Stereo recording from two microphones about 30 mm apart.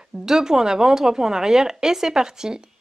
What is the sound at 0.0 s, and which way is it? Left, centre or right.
Speech, right.